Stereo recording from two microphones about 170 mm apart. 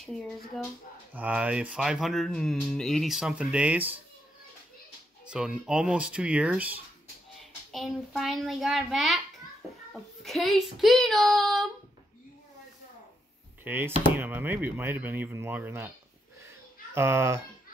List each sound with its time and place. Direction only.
1.1 s speech: 10° right (ahead or behind)
5.3 s speech: 5° right (ahead or behind)
10.2 s speech: centre (ahead or behind)
13.7 s speech: 10° right (ahead or behind)
16.9 s speech: 15° right (ahead or behind)